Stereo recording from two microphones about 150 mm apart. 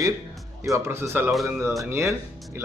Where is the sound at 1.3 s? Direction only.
Centre (ahead or behind).